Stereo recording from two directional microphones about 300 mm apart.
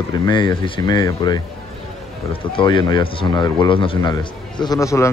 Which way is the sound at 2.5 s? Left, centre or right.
Centre.